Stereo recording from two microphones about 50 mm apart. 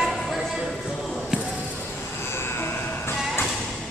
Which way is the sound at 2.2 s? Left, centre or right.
Left.